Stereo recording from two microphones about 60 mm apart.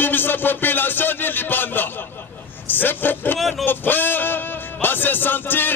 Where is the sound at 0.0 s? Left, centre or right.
Left.